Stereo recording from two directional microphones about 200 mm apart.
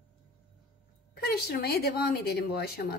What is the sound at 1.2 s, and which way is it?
A woman's voice, 50° left (ahead or behind).